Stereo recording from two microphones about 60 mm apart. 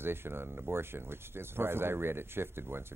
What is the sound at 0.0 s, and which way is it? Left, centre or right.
Speech, right.